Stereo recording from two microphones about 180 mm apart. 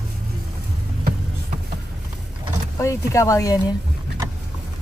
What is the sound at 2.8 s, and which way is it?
Speech, 15° left (ahead or behind).